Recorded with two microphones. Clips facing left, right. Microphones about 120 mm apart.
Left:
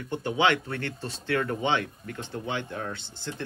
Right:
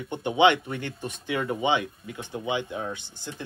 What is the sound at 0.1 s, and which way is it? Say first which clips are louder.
Speech: right 4 dB; 20° right (ahead or behind).